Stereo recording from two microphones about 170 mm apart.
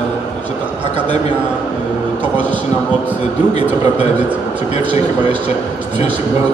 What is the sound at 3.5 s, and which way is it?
Speech, 40° left (ahead or behind).